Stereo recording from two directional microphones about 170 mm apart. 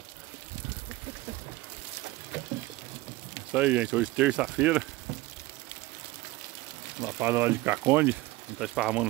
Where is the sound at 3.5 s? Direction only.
10° right (ahead or behind).